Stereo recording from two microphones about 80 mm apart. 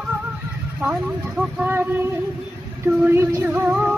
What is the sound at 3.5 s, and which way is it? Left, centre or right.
Music, centre.